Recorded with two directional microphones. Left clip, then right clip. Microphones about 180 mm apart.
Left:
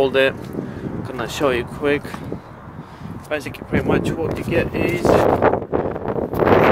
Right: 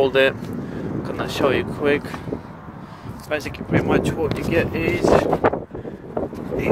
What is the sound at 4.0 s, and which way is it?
Speech, 25° right (ahead or behind).